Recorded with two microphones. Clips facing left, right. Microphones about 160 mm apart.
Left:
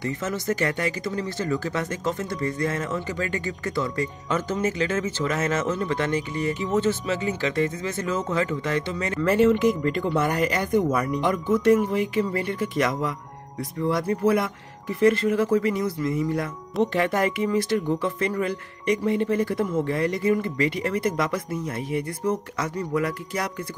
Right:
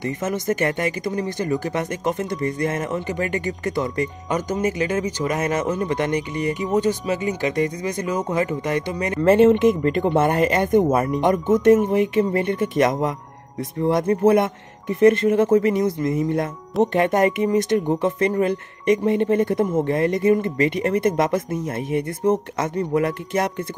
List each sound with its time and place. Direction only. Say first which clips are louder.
0.0 s speech: right 3 dB; 20° right (ahead or behind)
14.2 s speech: right 6 dB; 25° right (ahead or behind)